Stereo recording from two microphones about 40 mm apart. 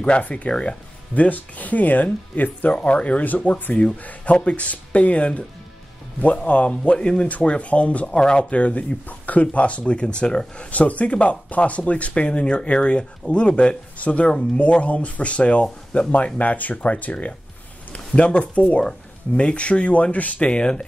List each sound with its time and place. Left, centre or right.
0.0 s speech: left
1.1 s speech: left
2.7 s speech: left
4.0 s speech: left
8.2 s speech: left
8.5 s speech: left
10.7 s speech: left
16.3 s speech: left
20.3 s speech: left